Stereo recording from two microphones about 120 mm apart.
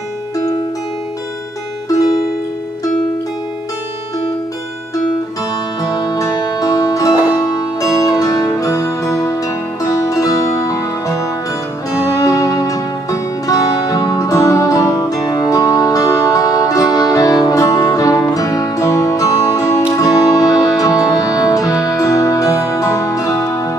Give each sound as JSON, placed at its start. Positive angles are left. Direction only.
{"t": 1.9, "sound": "music", "side_deg": 30}
{"t": 5.9, "sound": "music", "side_deg": 30}